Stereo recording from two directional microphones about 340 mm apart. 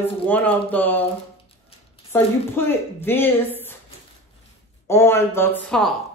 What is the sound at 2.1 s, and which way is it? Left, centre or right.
Speech, centre.